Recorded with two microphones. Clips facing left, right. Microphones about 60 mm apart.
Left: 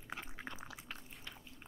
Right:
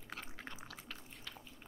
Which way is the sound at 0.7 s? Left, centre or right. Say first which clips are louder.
Left 1 dB; centre.